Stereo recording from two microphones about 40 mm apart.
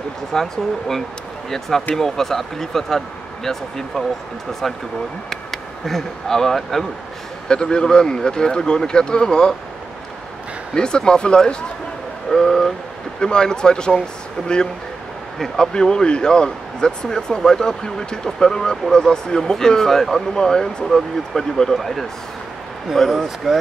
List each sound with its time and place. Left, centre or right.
0.3 s speech: centre
5.3 s speech: centre
7.4 s speech: left
10.7 s speech: centre
12.3 s speech: centre
15.3 s speech: centre
15.6 s speech: centre